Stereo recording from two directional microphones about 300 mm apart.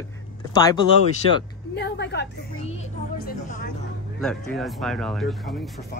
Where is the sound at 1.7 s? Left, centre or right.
Left.